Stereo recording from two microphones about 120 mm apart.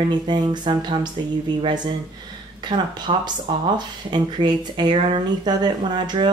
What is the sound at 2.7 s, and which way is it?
Speech, 40° right (ahead or behind).